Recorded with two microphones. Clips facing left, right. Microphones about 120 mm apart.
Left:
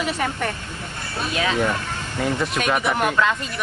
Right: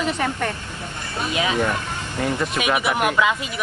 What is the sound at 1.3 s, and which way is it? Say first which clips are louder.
Speech: even; 15° right (ahead or behind).